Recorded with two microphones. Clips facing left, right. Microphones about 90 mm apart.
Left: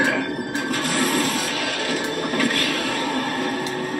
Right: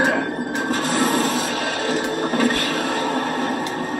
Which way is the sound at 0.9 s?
30° right (ahead or behind).